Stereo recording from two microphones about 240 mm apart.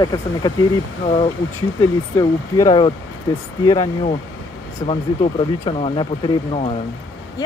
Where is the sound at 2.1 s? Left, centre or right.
Centre.